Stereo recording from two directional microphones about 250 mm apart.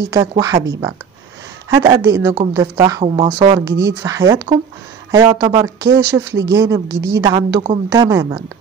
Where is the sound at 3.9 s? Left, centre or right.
Centre.